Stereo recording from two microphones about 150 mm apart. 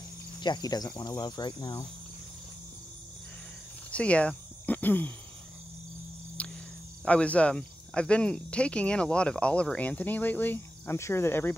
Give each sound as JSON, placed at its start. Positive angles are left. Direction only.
{"t": 0.4, "sound": "speech", "side_deg": 30}
{"t": 3.9, "sound": "speech", "side_deg": 10}
{"t": 6.4, "sound": "cricket", "side_deg": 10}
{"t": 7.1, "sound": "speech", "side_deg": 10}